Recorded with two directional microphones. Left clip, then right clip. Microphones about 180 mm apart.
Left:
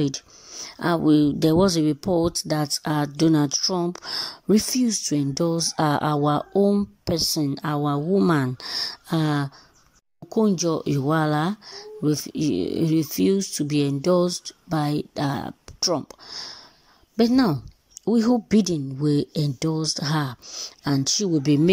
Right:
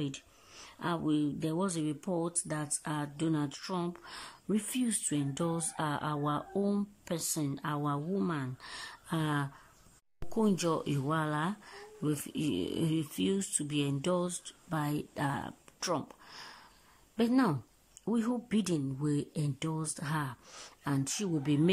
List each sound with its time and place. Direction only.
0.7 s speech: 35° left (ahead or behind)
6.7 s speech: 20° left (ahead or behind)
8.3 s speech: 35° left (ahead or behind)
10.3 s speech: 15° left (ahead or behind)
20.4 s speech: 10° left (ahead or behind)
20.8 s speech: 20° left (ahead or behind)